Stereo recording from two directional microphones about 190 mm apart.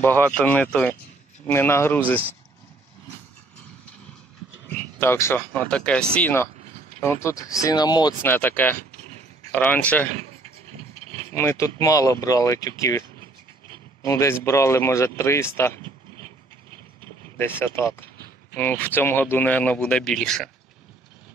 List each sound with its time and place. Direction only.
0.0 s speech: 10° left (ahead or behind)
4.6 s speech: 10° left (ahead or behind)
11.3 s speech: 15° left (ahead or behind)
14.0 s speech: 15° left (ahead or behind)
17.4 s speech: 10° left (ahead or behind)